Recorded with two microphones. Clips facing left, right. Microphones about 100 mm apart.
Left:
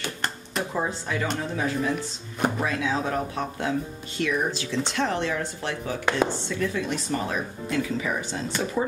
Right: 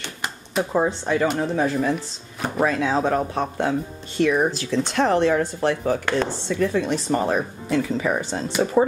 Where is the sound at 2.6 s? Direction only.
40° right (ahead or behind).